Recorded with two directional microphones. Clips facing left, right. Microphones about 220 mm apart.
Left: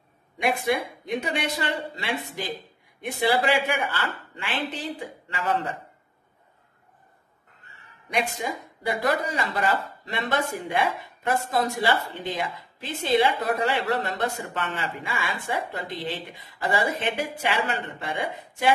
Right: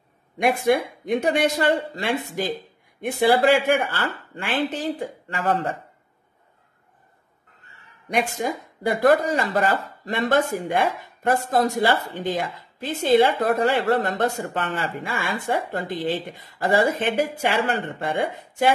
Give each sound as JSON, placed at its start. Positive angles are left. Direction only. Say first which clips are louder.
{"t": 0.4, "sound": "speech", "louder": "right 5 dB", "side_deg": -50}
{"t": 8.1, "sound": "speech", "louder": "right 4 dB", "side_deg": -50}